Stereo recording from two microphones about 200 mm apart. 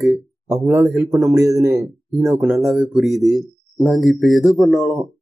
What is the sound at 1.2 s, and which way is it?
Speech, 15° right (ahead or behind).